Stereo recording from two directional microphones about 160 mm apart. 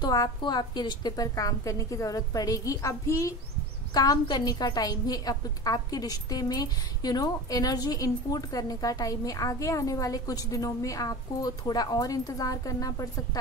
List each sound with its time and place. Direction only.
0.0 s a woman's voice: 25° left (ahead or behind)